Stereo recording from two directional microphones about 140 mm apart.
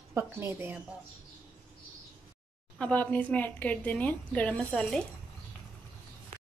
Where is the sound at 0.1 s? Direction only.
20° right (ahead or behind).